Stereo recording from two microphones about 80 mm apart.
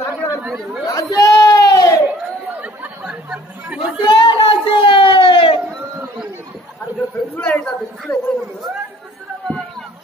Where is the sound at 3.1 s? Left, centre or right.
Centre.